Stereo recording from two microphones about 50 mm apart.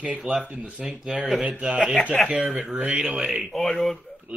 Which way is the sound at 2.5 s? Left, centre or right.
Right.